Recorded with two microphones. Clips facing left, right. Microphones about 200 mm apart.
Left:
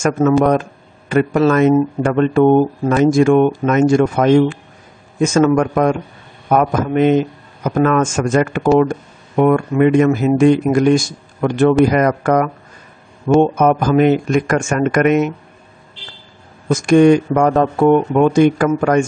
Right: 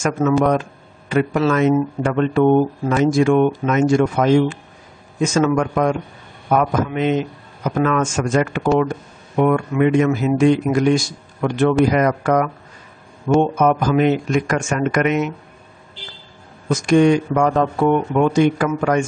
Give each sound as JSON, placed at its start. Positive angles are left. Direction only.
{"t": 0.0, "sound": "a man's voice", "side_deg": 50}
{"t": 16.6, "sound": "a man's voice", "side_deg": 50}